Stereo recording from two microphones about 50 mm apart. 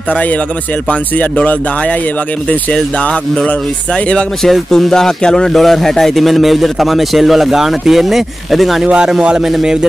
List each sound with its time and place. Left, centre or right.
1.1 s speech: left
3.4 s music: centre
4.4 s speech: centre
8.8 s speech: centre